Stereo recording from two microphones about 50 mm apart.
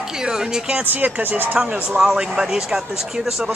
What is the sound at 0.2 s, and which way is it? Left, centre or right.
Speech, centre.